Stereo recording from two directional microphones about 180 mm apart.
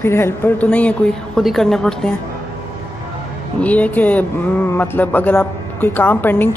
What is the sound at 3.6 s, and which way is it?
Speech, 10° left (ahead or behind).